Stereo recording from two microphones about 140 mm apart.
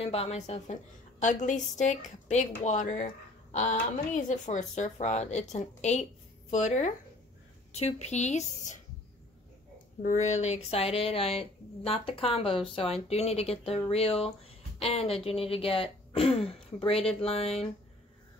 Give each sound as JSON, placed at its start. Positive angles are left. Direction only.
{"t": 0.0, "sound": "speech", "side_deg": 45}
{"t": 1.2, "sound": "speech", "side_deg": 60}
{"t": 10.0, "sound": "speech", "side_deg": 60}